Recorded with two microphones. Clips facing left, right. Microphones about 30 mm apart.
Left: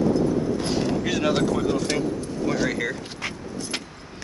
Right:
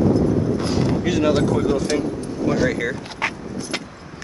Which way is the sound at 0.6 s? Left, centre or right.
Centre.